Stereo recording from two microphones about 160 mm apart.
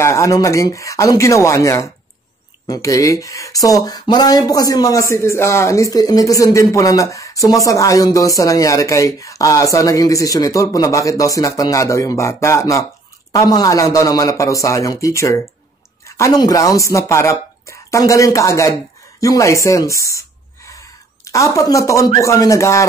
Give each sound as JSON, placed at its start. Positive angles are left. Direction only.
{"t": 0.0, "sound": "speech", "side_deg": 20}